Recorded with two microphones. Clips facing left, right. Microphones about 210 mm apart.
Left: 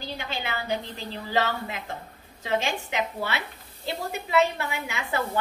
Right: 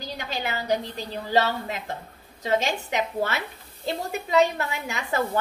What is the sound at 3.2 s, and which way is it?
Speech, 45° right (ahead or behind).